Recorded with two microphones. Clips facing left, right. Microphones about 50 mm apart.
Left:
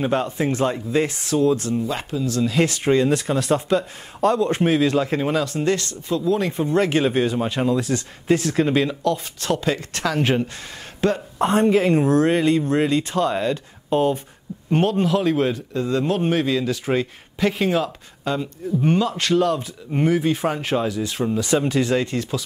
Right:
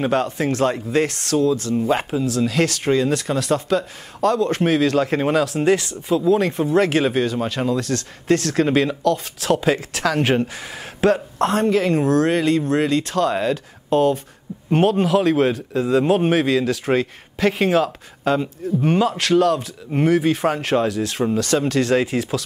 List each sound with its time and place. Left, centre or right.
0.1 s speech: centre
1.4 s speech: left
1.8 s speech: right
2.2 s a woman's voice: centre
11.3 s speech: centre
16.0 s speech: centre
16.3 s speech: centre